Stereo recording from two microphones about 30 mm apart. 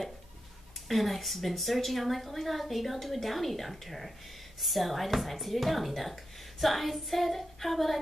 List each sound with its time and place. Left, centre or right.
0.8 s a woman's voice: centre